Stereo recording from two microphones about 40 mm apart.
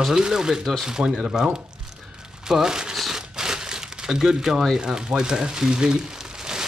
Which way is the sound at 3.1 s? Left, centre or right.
Centre.